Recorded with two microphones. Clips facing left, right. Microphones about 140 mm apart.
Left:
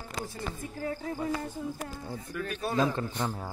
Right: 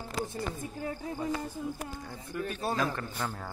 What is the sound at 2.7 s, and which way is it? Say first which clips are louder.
Speech: left 4 dB; 20° left (ahead or behind).